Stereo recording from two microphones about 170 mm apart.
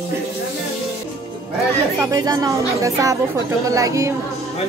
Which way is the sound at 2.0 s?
20° right (ahead or behind).